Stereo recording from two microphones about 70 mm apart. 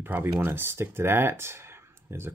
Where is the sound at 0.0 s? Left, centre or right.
Right.